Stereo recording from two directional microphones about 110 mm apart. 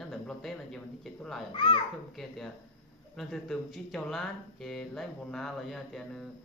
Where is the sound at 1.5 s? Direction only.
50° left (ahead or behind).